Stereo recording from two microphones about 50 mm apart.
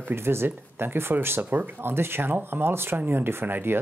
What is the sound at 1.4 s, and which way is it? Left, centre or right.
Speech, right.